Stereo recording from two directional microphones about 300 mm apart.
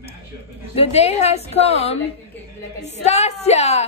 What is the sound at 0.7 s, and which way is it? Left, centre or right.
Speech, left.